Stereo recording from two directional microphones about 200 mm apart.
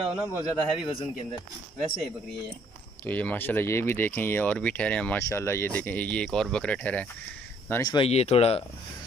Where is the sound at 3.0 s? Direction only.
10° left (ahead or behind).